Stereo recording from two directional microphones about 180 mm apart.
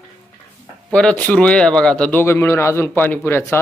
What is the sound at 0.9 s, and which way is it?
Speech, 5° left (ahead or behind).